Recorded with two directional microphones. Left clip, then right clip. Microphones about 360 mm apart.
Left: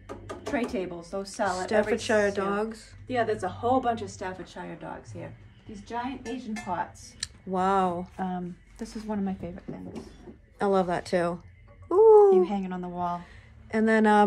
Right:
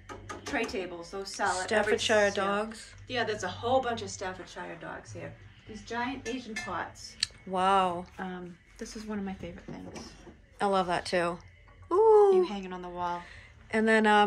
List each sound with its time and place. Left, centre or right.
0.5 s a woman's voice: left
1.7 s speech: centre
3.1 s a woman's voice: left
6.4 s a woman's voice: left
7.2 s speech: centre
8.2 s a woman's voice: left
10.6 s speech: centre
11.9 s a sound: centre
12.4 s a woman's voice: left
13.3 s a sound: centre